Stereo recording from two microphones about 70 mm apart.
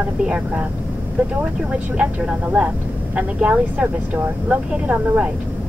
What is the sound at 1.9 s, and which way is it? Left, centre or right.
Speech, centre.